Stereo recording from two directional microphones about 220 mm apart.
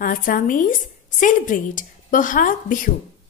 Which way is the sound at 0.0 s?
40° left (ahead or behind).